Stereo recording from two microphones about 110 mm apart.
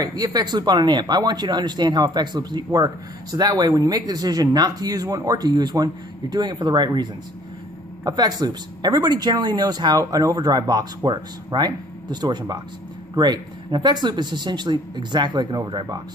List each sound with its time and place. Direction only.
0.0 s speech: 35° right (ahead or behind)